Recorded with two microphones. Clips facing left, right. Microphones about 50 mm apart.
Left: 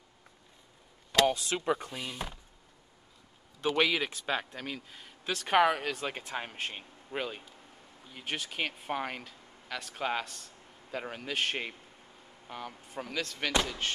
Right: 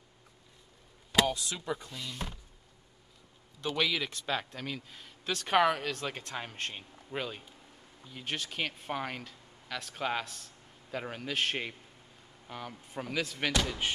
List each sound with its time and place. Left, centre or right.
1.2 s speech: left
1.9 s speech: left
3.6 s speech: left
4.1 s speech: centre